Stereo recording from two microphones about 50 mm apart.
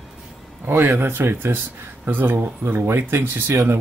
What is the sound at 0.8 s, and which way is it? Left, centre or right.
Speech, right.